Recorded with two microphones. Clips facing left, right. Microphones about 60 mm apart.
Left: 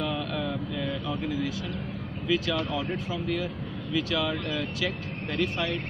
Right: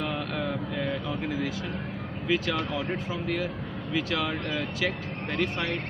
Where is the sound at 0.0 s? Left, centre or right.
Right.